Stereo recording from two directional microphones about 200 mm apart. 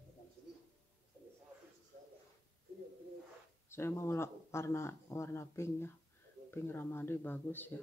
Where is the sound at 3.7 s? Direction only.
10° left (ahead or behind).